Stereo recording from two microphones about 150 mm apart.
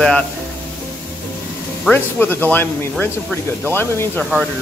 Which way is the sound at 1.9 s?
10° left (ahead or behind).